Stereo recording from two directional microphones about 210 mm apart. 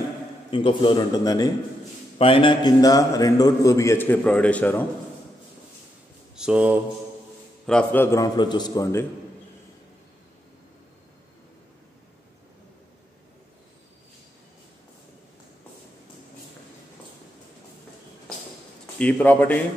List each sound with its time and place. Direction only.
0.5 s a man's voice: 25° left (ahead or behind); by 4.8 s 5° left (ahead or behind)
6.3 s speech: 5° right (ahead or behind)
7.6 s a man's voice: 5° left (ahead or behind)
18.9 s a man's voice: 5° left (ahead or behind)